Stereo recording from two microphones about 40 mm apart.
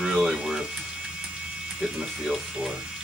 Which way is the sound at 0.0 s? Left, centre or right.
Centre.